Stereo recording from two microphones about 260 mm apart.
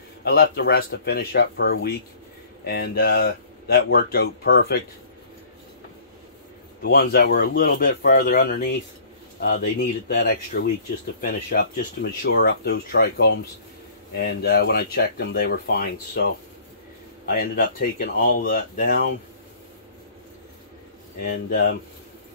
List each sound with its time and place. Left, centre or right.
0.2 s speech: left
6.8 s speech: left
17.3 s speech: left
21.2 s speech: left